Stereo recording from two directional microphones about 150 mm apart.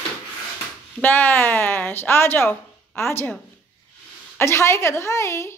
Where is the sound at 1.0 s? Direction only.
10° left (ahead or behind).